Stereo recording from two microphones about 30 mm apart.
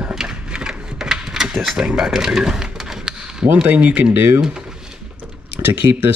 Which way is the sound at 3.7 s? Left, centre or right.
Right.